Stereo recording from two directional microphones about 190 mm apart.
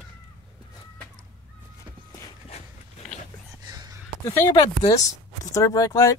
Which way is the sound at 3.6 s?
20° right (ahead or behind).